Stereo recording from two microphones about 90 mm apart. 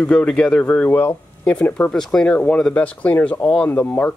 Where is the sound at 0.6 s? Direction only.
20° left (ahead or behind).